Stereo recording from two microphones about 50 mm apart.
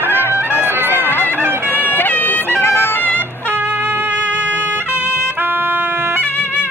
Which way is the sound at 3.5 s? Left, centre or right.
Right.